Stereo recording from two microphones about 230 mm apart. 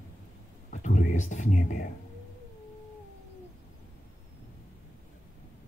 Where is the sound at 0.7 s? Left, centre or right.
Left.